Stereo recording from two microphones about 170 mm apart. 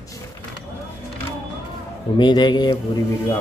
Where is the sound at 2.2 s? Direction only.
25° left (ahead or behind).